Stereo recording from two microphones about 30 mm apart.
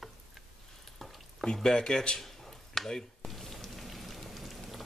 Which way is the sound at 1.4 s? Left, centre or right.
Left.